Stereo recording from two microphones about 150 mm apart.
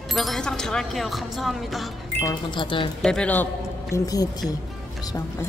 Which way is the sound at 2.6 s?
35° left (ahead or behind).